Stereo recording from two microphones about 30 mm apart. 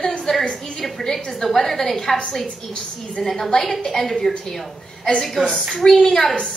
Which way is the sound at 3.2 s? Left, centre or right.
Centre.